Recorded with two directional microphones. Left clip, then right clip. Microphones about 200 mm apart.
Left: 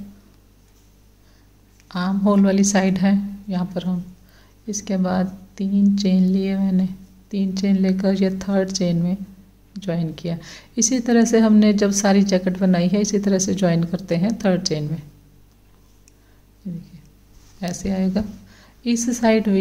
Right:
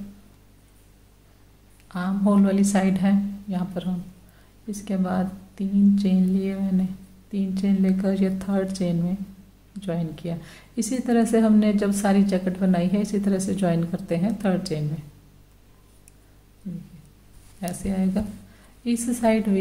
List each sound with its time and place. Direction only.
1.9 s speech: 30° left (ahead or behind)
17.6 s a woman's voice: 30° left (ahead or behind)